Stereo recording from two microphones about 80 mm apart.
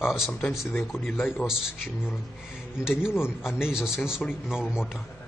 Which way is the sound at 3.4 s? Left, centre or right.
Centre.